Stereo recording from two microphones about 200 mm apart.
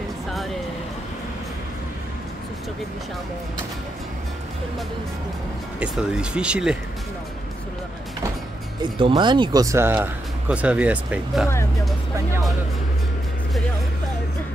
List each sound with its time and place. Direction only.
5.8 s speech: 5° right (ahead or behind)
8.9 s speech: 25° right (ahead or behind); by 11.4 s 5° right (ahead or behind)